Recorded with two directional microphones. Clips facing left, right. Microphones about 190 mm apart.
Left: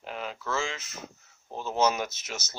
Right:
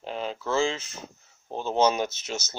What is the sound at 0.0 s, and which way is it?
Speech, 30° right (ahead or behind).